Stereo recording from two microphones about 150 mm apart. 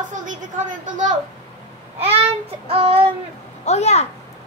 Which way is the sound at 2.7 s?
40° right (ahead or behind).